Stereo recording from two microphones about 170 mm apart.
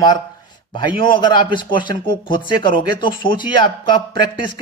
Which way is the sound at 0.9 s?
30° left (ahead or behind).